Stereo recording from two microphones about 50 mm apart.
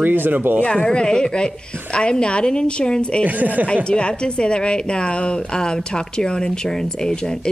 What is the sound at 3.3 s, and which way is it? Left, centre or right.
Speech, right.